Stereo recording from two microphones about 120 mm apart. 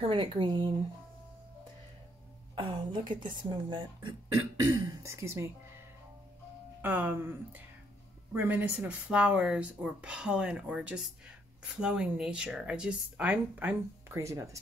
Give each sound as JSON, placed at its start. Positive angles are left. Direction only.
{"t": 0.0, "sound": "speech", "side_deg": -45}
{"t": 2.6, "sound": "a woman's voice", "side_deg": -40}
{"t": 4.8, "sound": "speech", "side_deg": -25}
{"t": 6.8, "sound": "speech", "side_deg": -15}
{"t": 14.1, "sound": "speech", "side_deg": -25}